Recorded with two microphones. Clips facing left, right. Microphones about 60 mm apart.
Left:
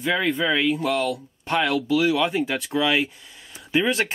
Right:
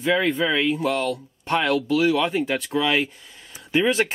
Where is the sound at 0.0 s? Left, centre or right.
Centre.